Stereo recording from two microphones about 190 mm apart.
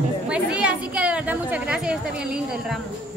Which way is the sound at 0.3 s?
5° right (ahead or behind).